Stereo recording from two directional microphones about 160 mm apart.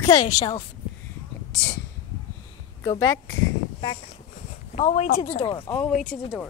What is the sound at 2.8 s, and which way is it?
Speech, 25° left (ahead or behind).